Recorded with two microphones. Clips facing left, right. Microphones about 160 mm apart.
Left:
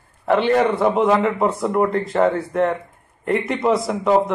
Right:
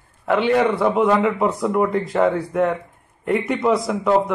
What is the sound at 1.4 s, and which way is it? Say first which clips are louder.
A man's voice: even; centre (ahead or behind).